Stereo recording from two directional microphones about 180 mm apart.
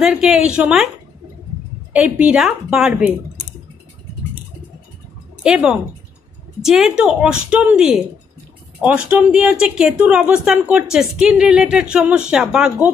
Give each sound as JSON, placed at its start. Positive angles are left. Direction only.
{"t": 0.0, "sound": "speech", "side_deg": -5}
{"t": 1.9, "sound": "a woman's voice", "side_deg": -5}
{"t": 5.4, "sound": "speech", "side_deg": -5}